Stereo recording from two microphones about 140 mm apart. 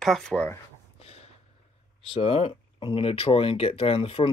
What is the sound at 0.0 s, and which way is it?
Speech, centre (ahead or behind).